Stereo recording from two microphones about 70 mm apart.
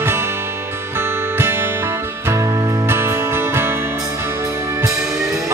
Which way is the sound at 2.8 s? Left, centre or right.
Right.